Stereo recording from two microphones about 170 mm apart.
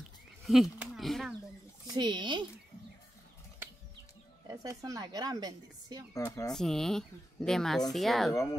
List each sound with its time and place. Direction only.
0.5 s speech: centre (ahead or behind)
2.0 s a woman's voice: 25° right (ahead or behind)
4.5 s a woman's voice: 20° right (ahead or behind)
6.1 s speech: 20° left (ahead or behind)
6.5 s speech: centre (ahead or behind)